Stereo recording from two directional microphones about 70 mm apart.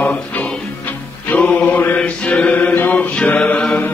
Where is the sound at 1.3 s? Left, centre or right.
Left.